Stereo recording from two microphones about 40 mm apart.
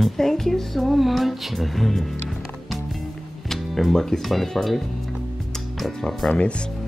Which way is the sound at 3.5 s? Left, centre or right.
Centre.